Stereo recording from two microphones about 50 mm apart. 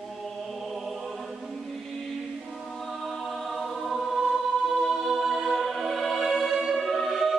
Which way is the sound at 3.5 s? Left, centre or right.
Centre.